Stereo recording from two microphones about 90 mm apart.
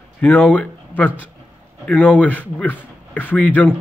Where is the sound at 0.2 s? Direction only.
20° left (ahead or behind).